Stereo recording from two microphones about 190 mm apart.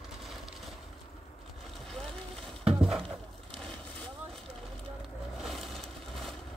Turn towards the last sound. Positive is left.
turn(degrees=0)  # may be behind; listen again after turning